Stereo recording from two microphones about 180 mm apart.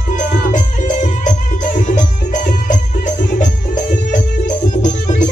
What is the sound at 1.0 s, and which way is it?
Music, 45° left (ahead or behind).